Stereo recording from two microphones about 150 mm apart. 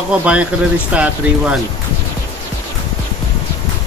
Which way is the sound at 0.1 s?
10° right (ahead or behind).